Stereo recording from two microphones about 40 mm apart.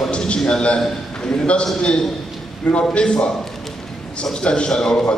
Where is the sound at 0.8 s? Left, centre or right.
Centre.